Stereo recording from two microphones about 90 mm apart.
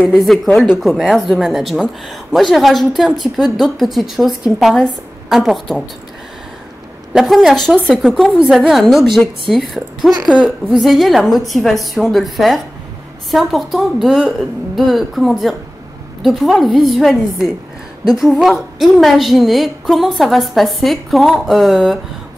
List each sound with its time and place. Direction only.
0.1 s a woman's voice: centre (ahead or behind)
0.5 s speech: 15° left (ahead or behind)
0.7 s a woman's voice: centre (ahead or behind)
7.2 s a woman's voice: centre (ahead or behind)
7.6 s speech: 10° left (ahead or behind)
7.9 s a woman's voice: centre (ahead or behind)
10.2 s a woman's voice: 10° right (ahead or behind)